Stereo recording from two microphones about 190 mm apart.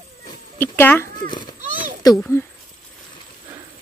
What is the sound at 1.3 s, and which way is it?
Speech, 25° left (ahead or behind).